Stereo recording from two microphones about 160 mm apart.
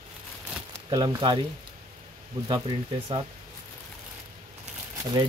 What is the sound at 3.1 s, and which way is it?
Speech, 35° right (ahead or behind).